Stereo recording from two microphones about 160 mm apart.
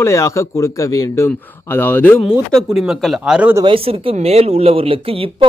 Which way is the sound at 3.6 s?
35° right (ahead or behind).